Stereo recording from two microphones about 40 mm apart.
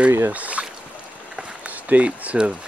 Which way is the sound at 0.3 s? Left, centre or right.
Right.